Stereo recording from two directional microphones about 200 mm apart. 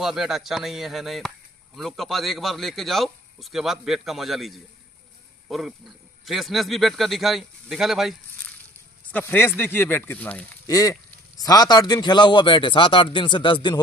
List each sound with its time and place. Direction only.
0.0 s speech: centre (ahead or behind)
9.1 s speech: 10° left (ahead or behind)